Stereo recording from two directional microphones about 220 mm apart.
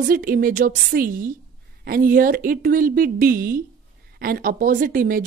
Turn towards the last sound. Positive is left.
turn(degrees=-40)  # may be behind; listen again after turning